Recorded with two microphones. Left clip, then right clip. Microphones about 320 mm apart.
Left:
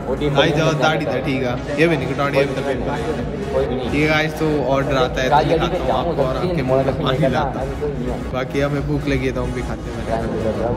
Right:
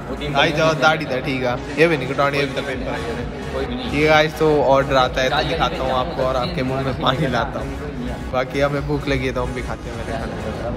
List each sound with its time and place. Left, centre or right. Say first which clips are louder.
0.4 s a man's voice: right 1 dB; centre
3.9 s a man's voice: right 5 dB; centre
5.3 s a man's voice: left 5 dB; left
5.6 s a man's voice: even; centre